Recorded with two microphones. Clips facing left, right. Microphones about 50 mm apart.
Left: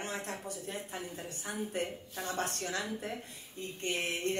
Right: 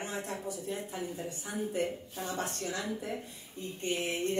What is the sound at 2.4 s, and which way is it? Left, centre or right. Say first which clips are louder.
Speech: left 1 dB; left.